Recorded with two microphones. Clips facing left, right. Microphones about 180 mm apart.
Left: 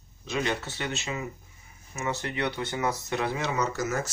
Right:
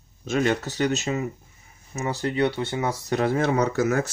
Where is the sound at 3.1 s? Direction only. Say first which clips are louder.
Right 7 dB; 45° right (ahead or behind).